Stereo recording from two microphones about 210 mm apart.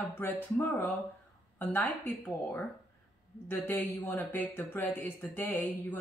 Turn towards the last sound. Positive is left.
turn(degrees=10)  # may be behind; listen again after turning